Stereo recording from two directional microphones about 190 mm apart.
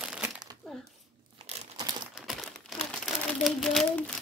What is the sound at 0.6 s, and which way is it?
Speech, 5° left (ahead or behind).